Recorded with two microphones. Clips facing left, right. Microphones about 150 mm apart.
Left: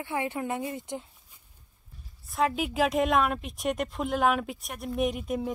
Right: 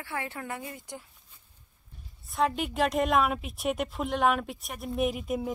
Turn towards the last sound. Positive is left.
turn(degrees=0)  # may be behind; listen again after turning